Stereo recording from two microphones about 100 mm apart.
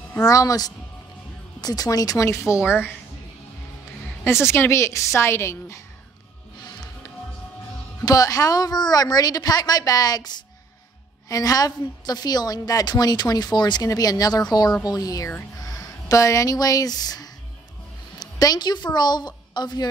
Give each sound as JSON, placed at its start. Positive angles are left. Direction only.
{"t": 0.3, "sound": "a woman's voice", "side_deg": 35}
{"t": 4.2, "sound": "speech", "side_deg": 25}
{"t": 6.6, "sound": "music", "side_deg": 40}
{"t": 8.0, "sound": "a woman's voice", "side_deg": 35}